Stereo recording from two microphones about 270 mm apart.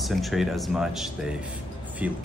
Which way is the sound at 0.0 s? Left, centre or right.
Centre.